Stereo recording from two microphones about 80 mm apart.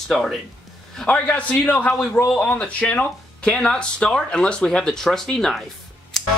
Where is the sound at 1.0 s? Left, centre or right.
Centre.